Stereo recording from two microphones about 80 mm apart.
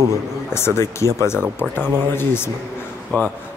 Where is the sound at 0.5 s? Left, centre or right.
Left.